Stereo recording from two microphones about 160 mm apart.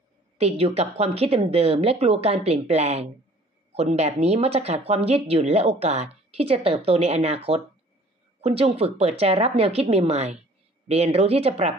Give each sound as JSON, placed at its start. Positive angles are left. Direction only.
{"t": 0.4, "sound": "speech", "side_deg": -40}